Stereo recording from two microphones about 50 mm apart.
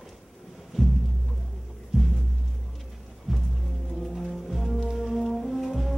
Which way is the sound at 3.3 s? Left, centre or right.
Centre.